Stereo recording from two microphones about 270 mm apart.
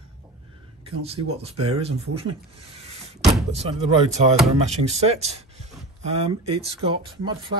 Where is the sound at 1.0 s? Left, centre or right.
Right.